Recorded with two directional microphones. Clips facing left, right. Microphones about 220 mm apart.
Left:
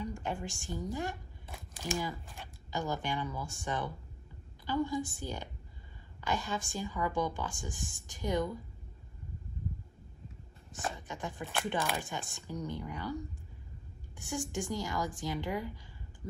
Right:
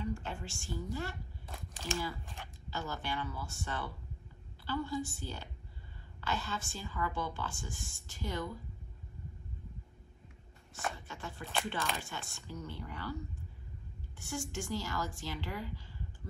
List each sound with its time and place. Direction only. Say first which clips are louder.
0.0 s a sound: left 1 dB; 15° left (ahead or behind)
0.5 s a woman's voice: left 2 dB; 15° left (ahead or behind)
11.0 s a woman's voice: left 5 dB; 15° left (ahead or behind)
14.1 s a woman's voice: left 3 dB; 15° left (ahead or behind)